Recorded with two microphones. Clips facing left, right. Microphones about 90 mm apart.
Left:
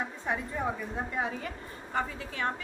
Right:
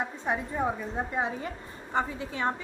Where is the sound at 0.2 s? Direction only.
20° right (ahead or behind).